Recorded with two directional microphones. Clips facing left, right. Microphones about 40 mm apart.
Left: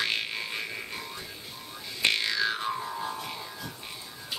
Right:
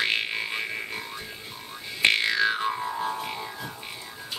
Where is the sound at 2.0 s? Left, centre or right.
Right.